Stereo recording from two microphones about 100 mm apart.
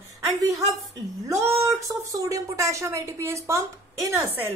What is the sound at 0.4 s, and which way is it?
A woman's voice, 35° right (ahead or behind).